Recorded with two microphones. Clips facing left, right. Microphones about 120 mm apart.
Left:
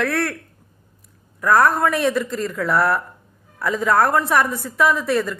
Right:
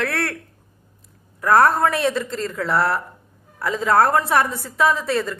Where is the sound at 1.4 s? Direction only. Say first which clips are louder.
Right 1 dB; 30° right (ahead or behind).